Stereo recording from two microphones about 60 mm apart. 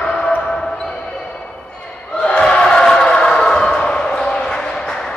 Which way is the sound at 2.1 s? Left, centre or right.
Centre.